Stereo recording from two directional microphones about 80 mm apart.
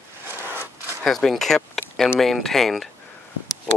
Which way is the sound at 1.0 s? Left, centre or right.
Centre.